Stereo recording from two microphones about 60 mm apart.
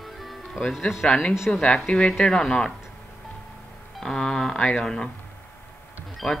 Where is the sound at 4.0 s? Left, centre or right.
Centre.